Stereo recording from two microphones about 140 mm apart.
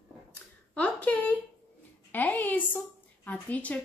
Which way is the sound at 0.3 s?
10° left (ahead or behind).